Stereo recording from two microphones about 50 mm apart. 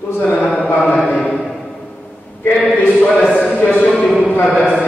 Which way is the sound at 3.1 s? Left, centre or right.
Centre.